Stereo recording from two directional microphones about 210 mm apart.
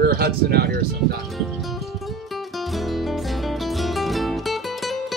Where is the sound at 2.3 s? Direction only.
Centre (ahead or behind).